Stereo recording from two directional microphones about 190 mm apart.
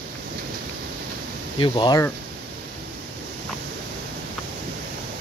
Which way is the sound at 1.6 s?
20° left (ahead or behind).